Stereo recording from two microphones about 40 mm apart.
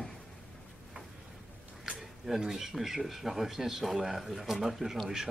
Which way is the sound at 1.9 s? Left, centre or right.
Centre.